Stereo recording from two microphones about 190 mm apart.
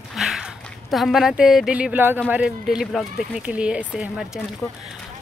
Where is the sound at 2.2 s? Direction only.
5° right (ahead or behind).